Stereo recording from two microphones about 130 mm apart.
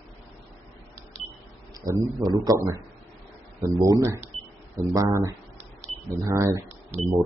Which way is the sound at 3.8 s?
25° right (ahead or behind).